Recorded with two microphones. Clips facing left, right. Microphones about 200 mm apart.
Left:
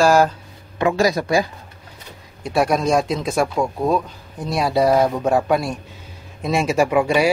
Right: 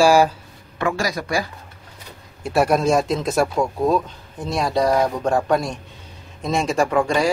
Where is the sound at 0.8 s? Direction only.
20° left (ahead or behind).